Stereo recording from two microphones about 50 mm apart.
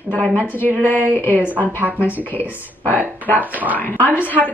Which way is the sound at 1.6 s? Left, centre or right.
Right.